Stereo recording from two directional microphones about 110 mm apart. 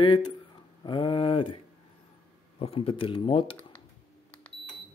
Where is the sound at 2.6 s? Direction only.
60° left (ahead or behind).